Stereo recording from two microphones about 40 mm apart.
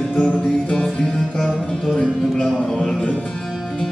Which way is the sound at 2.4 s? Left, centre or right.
Centre.